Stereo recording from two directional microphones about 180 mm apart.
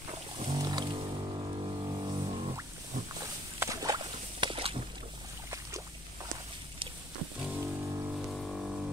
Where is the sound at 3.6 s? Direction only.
20° right (ahead or behind).